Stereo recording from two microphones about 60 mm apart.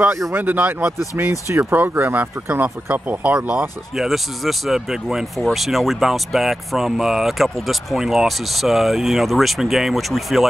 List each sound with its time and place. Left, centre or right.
0.3 s speech: right
3.9 s speech: centre